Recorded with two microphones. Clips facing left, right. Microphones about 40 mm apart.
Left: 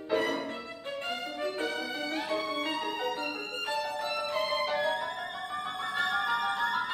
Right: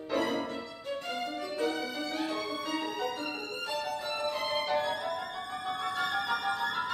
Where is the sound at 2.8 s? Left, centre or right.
Left.